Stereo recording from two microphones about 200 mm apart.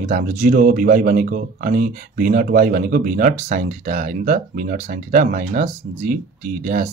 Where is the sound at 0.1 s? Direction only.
40° right (ahead or behind).